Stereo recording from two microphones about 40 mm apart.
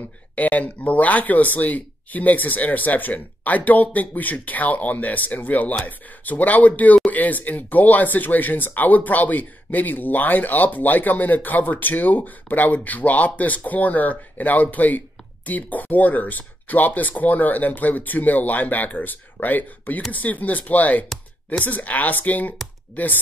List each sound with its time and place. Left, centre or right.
0.4 s speech: left